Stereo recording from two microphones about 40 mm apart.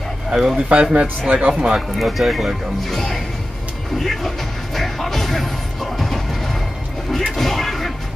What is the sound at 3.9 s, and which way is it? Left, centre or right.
Music, centre.